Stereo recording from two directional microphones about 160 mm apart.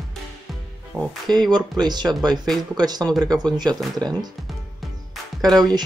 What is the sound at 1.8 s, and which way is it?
Speech, 25° right (ahead or behind).